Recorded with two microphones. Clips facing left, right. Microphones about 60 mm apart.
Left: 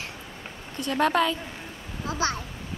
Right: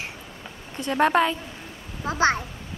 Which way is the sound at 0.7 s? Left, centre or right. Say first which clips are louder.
Right 3 dB; right.